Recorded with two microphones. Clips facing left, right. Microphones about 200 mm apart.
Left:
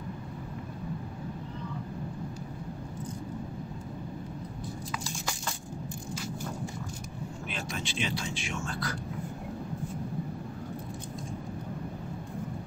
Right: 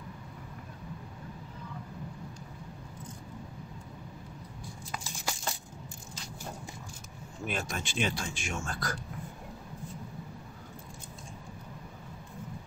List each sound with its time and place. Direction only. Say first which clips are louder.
7.4 s speech: right 4 dB; 50° right (ahead or behind)